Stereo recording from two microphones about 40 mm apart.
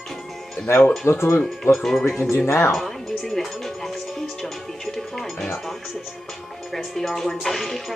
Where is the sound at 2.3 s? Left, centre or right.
Left.